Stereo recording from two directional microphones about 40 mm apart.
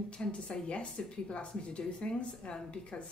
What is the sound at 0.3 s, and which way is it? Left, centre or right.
Speech, left.